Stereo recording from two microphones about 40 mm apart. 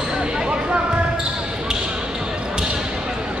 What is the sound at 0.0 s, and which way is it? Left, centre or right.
Basketball bounce, centre.